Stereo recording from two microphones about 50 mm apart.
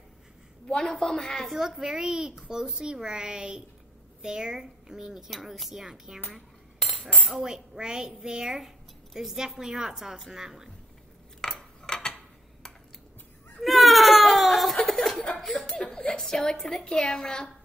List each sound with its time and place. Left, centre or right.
0.7 s a woman's voice: centre
1.5 s a woman's voice: centre
6.3 s a sound: centre
7.3 s a woman's voice: centre
11.4 s cutlery: centre
13.6 s baby cry: centre
14.9 s chuckle: centre
15.9 s a sound: centre
16.2 s a woman's voice: centre